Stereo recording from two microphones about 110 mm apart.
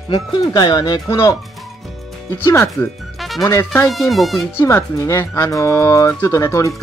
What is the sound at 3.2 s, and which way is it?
Music, centre (ahead or behind).